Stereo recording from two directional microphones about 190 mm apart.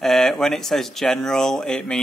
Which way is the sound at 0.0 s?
Centre (ahead or behind).